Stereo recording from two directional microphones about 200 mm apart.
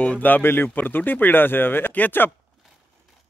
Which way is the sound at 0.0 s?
5° left (ahead or behind).